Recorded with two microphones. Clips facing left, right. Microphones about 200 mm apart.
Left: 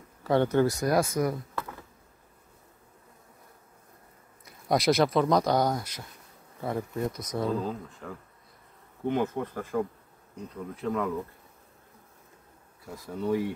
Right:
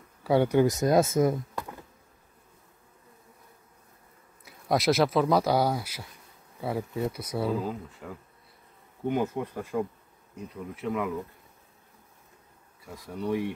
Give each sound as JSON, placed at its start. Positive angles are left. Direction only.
{"t": 0.2, "sound": "speech", "side_deg": -10}
{"t": 4.5, "sound": "speech", "side_deg": 0}
{"t": 12.8, "sound": "speech", "side_deg": 0}